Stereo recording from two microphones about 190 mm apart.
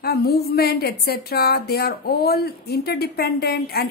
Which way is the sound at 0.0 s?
55° left (ahead or behind).